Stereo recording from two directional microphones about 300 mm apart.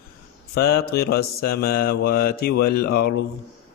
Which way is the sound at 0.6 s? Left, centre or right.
Left.